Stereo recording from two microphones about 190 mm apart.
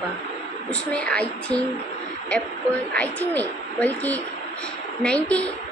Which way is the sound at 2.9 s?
10° left (ahead or behind).